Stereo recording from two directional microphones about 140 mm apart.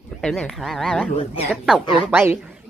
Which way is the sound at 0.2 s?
5° left (ahead or behind).